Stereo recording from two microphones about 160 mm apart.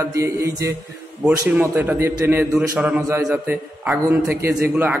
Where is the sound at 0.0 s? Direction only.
20° right (ahead or behind).